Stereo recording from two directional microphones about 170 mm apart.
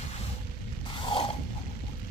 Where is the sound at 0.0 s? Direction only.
35° left (ahead or behind).